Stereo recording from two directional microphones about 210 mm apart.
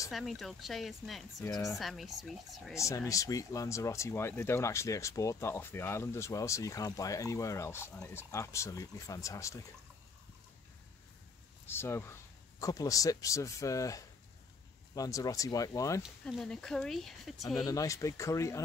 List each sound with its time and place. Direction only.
0.1 s speech: centre (ahead or behind)
1.4 s speech: 15° left (ahead or behind)
1.8 s speech: centre (ahead or behind)
2.7 s speech: 15° left (ahead or behind)
11.6 s speech: 10° left (ahead or behind)
16.0 s speech: centre (ahead or behind)
17.6 s speech: 15° left (ahead or behind)